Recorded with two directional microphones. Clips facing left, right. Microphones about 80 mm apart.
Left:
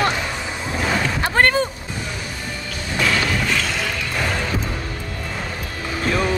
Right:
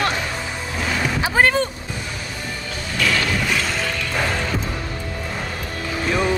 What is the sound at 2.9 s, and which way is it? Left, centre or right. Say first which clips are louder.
Music: left 1 dB; left.